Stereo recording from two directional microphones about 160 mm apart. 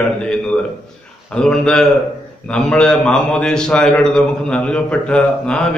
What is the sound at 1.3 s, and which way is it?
A man's voice, 5° left (ahead or behind).